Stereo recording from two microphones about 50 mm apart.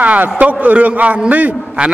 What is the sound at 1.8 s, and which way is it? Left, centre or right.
Speech, centre.